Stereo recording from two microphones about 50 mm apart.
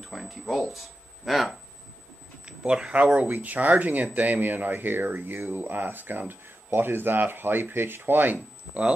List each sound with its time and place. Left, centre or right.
0.0 s speech: centre
2.4 s speech: centre; by 8.4 s right